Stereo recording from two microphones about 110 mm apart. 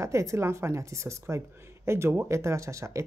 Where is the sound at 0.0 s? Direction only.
25° right (ahead or behind).